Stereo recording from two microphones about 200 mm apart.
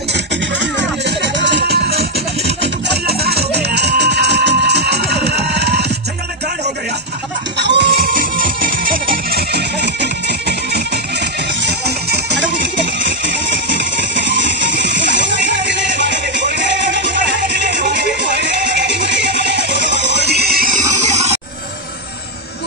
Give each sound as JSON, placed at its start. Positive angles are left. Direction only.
{"t": 0.1, "sound": "music", "side_deg": -60}
{"t": 7.5, "sound": "music", "side_deg": -60}
{"t": 21.0, "sound": "a sound", "side_deg": -35}